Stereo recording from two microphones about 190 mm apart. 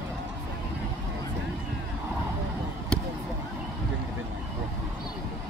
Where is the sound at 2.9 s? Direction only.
5° left (ahead or behind).